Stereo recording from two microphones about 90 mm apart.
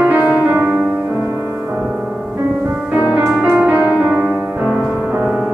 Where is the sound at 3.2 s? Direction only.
25° right (ahead or behind).